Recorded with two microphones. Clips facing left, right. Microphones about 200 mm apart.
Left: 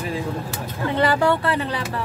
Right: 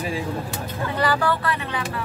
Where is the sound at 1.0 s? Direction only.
25° left (ahead or behind).